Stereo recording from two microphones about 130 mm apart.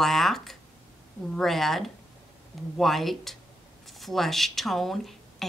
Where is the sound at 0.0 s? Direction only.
Centre (ahead or behind).